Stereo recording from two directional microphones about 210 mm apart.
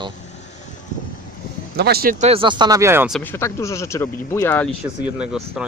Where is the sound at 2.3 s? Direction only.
25° right (ahead or behind).